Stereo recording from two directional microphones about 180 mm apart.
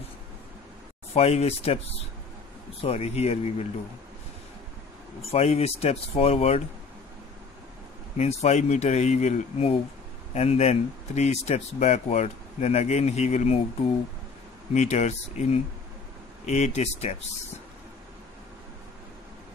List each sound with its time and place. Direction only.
1.1 s speech: 35° left (ahead or behind)
2.8 s speech: 35° left (ahead or behind)
5.3 s speech: 35° left (ahead or behind)
8.2 s speech: 35° left (ahead or behind)
14.7 s speech: 40° left (ahead or behind)